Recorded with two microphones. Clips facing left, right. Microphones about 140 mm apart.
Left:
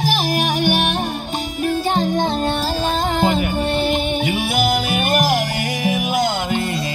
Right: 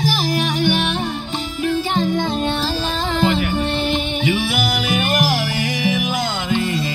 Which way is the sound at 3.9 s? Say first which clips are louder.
Even; 45° left (ahead or behind).